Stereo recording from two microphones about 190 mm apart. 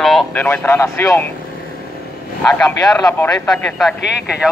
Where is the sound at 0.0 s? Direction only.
Centre (ahead or behind).